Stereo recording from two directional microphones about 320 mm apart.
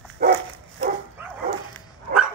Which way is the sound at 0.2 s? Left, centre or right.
Right.